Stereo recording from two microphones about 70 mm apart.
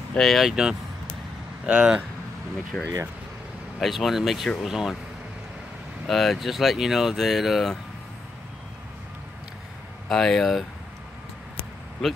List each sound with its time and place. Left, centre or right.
0.1 s speech: centre
2.7 s speech: centre
3.8 s speech: centre
6.0 s speech: centre
10.0 s speech: centre
12.0 s speech: centre